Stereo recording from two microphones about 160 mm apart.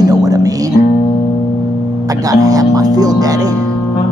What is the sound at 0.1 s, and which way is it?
Music, 20° right (ahead or behind).